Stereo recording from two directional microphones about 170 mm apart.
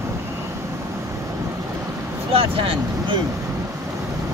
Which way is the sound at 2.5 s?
30° right (ahead or behind).